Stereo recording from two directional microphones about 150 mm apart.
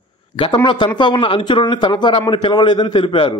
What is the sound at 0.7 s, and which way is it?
A man's voice, 30° left (ahead or behind).